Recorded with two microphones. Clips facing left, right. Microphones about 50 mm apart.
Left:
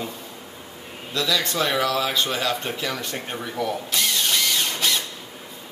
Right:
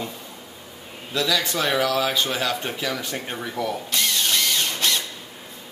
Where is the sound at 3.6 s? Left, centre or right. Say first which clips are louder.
Even; centre.